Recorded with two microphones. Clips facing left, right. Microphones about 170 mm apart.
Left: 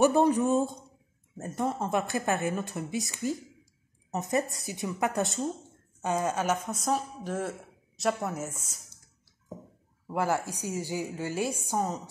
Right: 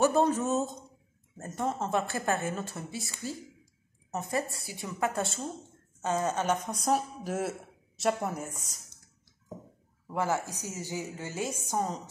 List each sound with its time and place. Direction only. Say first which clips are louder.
0.0 s a woman's voice: left 3 dB; 15° left (ahead or behind)
6.9 s a woman's voice: right 1 dB; 10° right (ahead or behind)
10.0 s a woman's voice: left 2 dB; 15° left (ahead or behind)